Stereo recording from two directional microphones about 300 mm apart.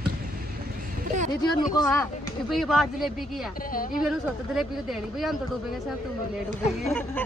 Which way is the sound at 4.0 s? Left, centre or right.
Centre.